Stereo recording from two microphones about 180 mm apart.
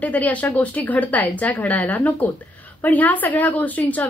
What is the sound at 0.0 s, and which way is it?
A woman's voice, 10° left (ahead or behind).